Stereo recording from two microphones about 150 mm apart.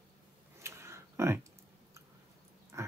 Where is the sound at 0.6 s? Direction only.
20° right (ahead or behind).